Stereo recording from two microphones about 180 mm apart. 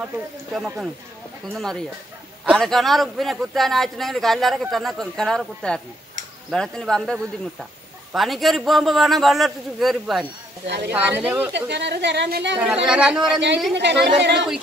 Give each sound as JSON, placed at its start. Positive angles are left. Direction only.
{"t": 0.0, "sound": "speech", "side_deg": -5}
{"t": 11.7, "sound": "speech", "side_deg": -70}
{"t": 12.5, "sound": "speech", "side_deg": -5}
{"t": 13.7, "sound": "speech", "side_deg": -70}